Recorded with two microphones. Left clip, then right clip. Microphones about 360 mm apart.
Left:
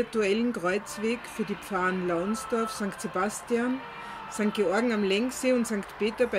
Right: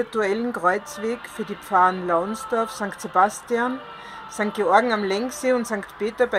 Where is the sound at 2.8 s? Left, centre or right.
Right.